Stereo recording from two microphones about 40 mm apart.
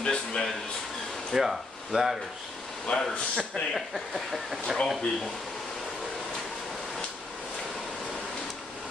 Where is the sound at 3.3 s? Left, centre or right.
Centre.